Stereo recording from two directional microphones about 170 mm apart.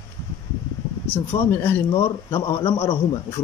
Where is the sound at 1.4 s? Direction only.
15° left (ahead or behind).